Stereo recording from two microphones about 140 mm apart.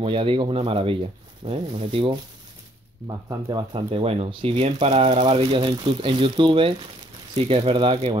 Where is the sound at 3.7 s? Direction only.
40° right (ahead or behind).